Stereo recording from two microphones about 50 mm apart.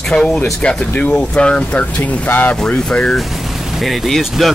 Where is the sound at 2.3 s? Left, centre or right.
Left.